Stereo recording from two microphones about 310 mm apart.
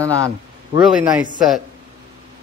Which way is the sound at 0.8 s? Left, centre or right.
Centre.